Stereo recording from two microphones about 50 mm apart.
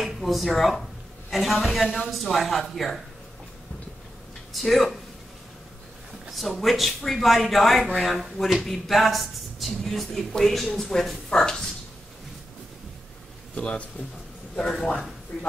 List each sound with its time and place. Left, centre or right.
0.0 s speech: centre
4.6 s speech: centre
6.2 s speech: centre
13.6 s speech: left